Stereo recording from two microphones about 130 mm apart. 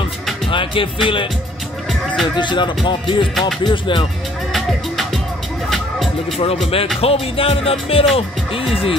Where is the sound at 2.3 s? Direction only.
35° left (ahead or behind).